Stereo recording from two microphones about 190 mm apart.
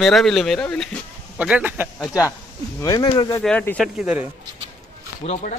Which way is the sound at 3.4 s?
5° left (ahead or behind).